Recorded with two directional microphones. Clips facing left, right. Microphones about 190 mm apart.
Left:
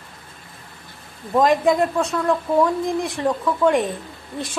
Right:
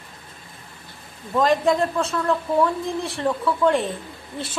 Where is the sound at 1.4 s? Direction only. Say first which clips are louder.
Left 2 dB; 15° left (ahead or behind).